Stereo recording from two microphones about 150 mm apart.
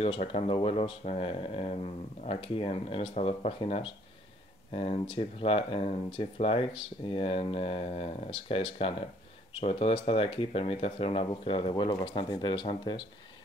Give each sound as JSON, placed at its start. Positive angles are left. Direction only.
{"t": 0.0, "sound": "speech", "side_deg": 40}